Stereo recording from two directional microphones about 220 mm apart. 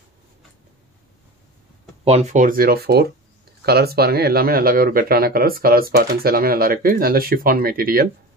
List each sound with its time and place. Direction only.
2.0 s speech: 30° right (ahead or behind)